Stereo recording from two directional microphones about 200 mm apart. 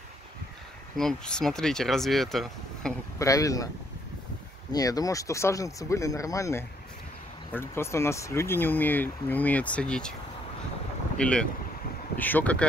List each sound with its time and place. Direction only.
0.9 s speech: 5° left (ahead or behind)
3.2 s speech: 15° left (ahead or behind)
4.7 s speech: 20° left (ahead or behind)
11.1 s speech: 5° left (ahead or behind)